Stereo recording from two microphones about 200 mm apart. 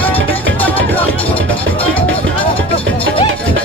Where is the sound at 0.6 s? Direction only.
10° left (ahead or behind).